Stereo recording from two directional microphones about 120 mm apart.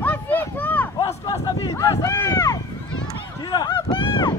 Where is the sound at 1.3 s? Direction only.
30° left (ahead or behind).